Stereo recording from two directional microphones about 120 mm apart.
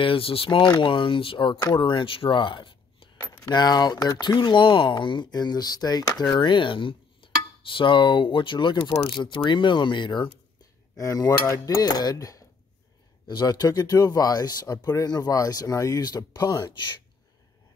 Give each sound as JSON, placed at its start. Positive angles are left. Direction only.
{"t": 0.0, "sound": "speech", "side_deg": 50}
{"t": 11.0, "sound": "speech", "side_deg": 30}